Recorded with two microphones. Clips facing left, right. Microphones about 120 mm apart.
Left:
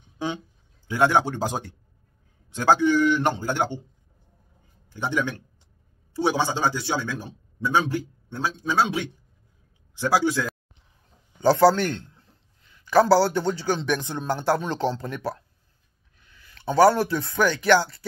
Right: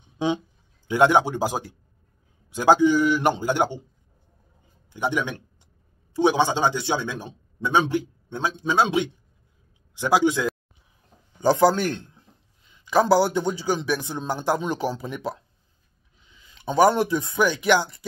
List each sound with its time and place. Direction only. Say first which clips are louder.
0.2 s a man's voice: right 5 dB; 20° right (ahead or behind)
4.8 s a man's voice: right 1 dB; 15° right (ahead or behind)